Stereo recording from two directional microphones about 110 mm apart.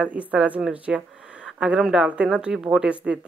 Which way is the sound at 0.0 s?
15° right (ahead or behind).